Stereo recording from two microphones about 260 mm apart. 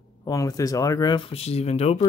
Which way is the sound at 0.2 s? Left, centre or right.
Centre.